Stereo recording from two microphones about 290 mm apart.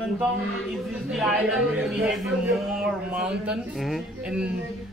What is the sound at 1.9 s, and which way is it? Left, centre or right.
Speech, centre.